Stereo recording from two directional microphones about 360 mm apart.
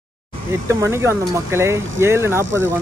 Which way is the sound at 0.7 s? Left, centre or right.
Centre.